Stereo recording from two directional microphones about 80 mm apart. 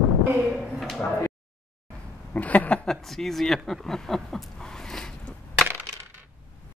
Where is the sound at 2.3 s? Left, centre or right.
Centre.